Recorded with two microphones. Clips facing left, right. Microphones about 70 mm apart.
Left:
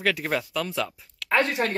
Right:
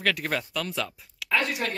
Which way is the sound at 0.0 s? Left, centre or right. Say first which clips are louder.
Left 2 dB; centre.